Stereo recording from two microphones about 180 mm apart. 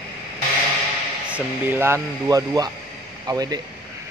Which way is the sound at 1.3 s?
10° right (ahead or behind).